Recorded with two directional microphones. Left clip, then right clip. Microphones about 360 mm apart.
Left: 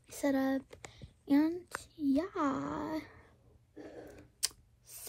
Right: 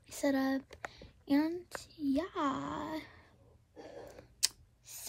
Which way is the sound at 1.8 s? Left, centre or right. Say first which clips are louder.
Left 3 dB; centre.